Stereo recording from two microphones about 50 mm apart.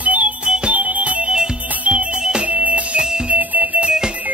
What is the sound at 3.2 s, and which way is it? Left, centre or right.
Music, right.